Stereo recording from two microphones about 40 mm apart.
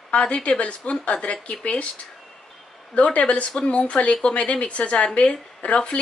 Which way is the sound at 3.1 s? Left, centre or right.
Left.